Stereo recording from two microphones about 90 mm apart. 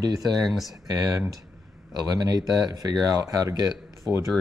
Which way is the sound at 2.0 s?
40° right (ahead or behind).